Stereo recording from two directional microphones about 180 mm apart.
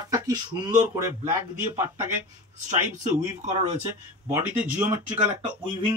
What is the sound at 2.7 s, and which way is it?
Speech, 40° right (ahead or behind).